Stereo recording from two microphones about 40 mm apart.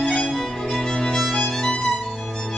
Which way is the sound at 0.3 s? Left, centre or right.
Centre.